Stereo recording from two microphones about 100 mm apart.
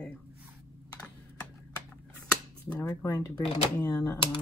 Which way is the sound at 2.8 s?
35° left (ahead or behind).